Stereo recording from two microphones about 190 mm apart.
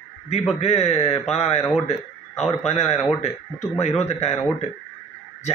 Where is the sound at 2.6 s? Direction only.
35° left (ahead or behind).